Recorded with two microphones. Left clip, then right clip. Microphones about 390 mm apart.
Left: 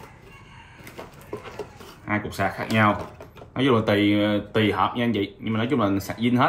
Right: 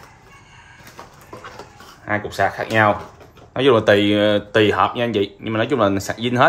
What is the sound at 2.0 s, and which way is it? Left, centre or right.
Speech, right.